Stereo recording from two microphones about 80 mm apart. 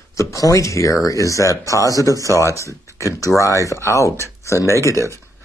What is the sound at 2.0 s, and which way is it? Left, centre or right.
Speech, right.